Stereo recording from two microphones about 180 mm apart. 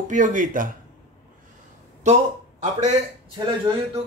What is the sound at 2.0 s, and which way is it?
Speech, 40° right (ahead or behind).